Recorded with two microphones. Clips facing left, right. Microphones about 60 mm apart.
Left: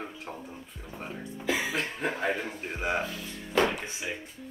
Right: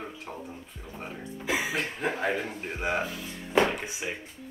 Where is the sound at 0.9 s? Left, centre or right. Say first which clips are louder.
Even; centre.